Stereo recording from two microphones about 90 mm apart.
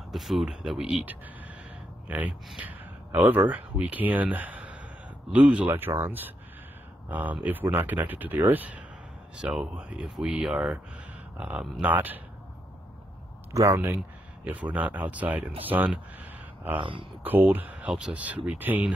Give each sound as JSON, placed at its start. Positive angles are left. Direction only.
{"t": 0.1, "sound": "speech", "side_deg": 0}
{"t": 1.0, "sound": "speech", "side_deg": -20}
{"t": 13.5, "sound": "speech", "side_deg": -35}
{"t": 14.4, "sound": "speech", "side_deg": -15}
{"t": 16.7, "sound": "speech", "side_deg": -70}
{"t": 17.2, "sound": "speech", "side_deg": -20}